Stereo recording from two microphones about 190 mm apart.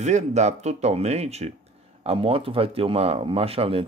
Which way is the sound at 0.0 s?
35° right (ahead or behind).